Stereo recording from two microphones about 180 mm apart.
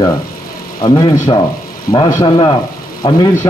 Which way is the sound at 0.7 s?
20° left (ahead or behind).